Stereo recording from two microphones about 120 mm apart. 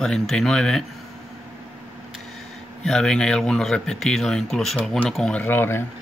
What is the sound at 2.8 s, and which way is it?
Speech, 5° left (ahead or behind).